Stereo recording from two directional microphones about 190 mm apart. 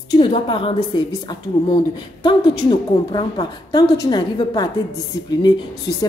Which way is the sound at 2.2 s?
25° left (ahead or behind).